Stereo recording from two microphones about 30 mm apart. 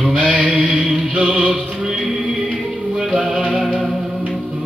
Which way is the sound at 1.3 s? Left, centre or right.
Right.